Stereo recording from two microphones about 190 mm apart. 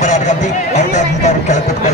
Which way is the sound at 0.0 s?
40° left (ahead or behind).